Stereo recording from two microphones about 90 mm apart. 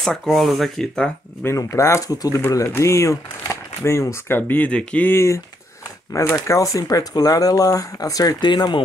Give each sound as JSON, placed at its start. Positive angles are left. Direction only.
{"t": 0.0, "sound": "speech", "side_deg": 5}
{"t": 1.4, "sound": "speech", "side_deg": 35}
{"t": 4.4, "sound": "speech", "side_deg": 20}
{"t": 5.1, "sound": "speech", "side_deg": 30}